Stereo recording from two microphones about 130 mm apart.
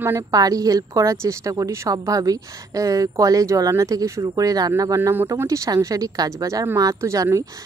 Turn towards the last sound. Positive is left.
turn(degrees=-25)  # may be behind; listen again after turning